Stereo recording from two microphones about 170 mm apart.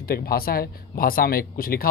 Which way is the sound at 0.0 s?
60° left (ahead or behind).